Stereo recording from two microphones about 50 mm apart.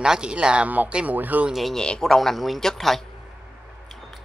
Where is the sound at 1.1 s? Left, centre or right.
Right.